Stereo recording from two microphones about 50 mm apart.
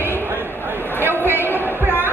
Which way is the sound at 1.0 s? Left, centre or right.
Right.